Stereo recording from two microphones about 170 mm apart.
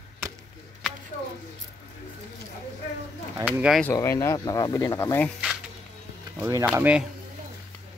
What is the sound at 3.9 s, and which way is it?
Speech, 15° left (ahead or behind).